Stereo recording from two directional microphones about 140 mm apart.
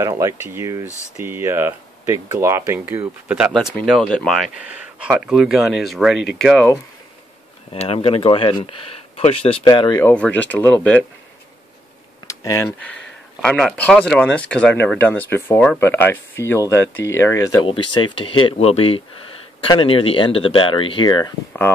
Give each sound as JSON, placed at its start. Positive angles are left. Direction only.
{"t": 0.2, "sound": "speech", "side_deg": -20}
{"t": 4.6, "sound": "speech", "side_deg": -10}
{"t": 7.7, "sound": "speech", "side_deg": 45}
{"t": 9.7, "sound": "speech", "side_deg": 30}
{"t": 10.0, "sound": "speech", "side_deg": 10}
{"t": 12.3, "sound": "computer keyboard", "side_deg": 25}
{"t": 12.6, "sound": "speech", "side_deg": 10}
{"t": 17.6, "sound": "speech", "side_deg": 35}